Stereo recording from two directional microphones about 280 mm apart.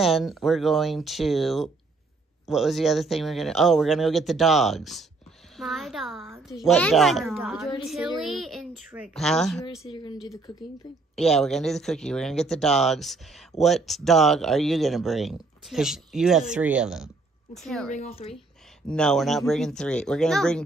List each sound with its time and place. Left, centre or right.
0.0 s speech: centre
10.2 s speech: centre
11.1 s speech: centre
17.9 s speech: left
18.9 s speech: centre